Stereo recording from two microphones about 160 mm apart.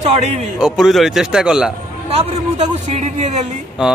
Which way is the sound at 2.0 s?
45° right (ahead or behind).